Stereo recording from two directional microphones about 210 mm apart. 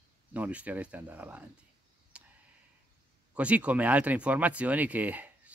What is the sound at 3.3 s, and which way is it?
Speech, 5° right (ahead or behind).